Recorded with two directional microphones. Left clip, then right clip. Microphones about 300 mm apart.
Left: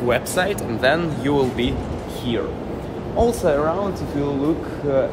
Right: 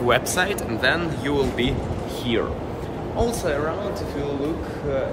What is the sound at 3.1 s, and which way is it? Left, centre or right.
Speech, centre.